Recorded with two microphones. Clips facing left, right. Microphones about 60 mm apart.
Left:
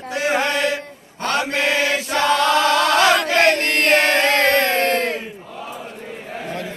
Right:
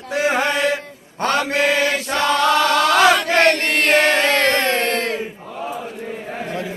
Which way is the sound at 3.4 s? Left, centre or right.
Centre.